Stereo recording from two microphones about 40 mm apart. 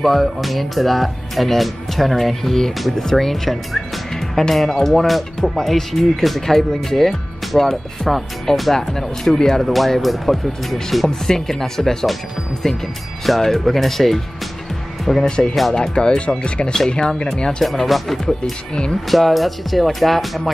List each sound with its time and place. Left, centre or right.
0.0 s speech: centre
11.1 s speech: centre
15.2 s speech: left
16.7 s speech: centre
17.6 s speech: centre
18.4 s speech: left
19.0 s speech: centre